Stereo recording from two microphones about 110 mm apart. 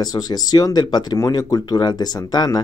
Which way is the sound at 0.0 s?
35° left (ahead or behind).